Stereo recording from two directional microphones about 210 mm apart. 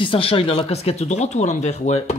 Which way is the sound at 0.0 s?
25° left (ahead or behind).